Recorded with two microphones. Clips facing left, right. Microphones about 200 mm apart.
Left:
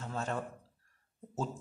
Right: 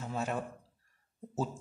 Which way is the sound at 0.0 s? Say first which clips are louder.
Right 2 dB; 10° right (ahead or behind).